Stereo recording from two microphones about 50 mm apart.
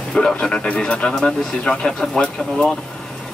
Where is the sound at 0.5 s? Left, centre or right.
Left.